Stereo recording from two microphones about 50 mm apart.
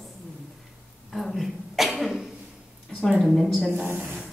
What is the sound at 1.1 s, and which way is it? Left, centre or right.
Cough, centre.